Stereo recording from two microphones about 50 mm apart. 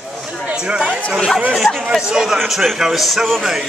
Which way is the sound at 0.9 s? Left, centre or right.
Left.